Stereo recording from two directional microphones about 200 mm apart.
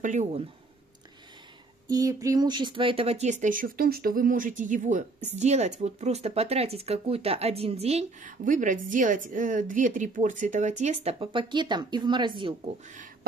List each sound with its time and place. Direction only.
0.0 s speech: 35° right (ahead or behind)
1.9 s speech: 15° right (ahead or behind); by 13.3 s 40° right (ahead or behind)